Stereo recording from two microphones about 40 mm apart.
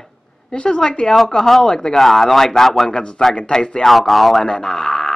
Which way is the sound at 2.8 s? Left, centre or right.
Centre.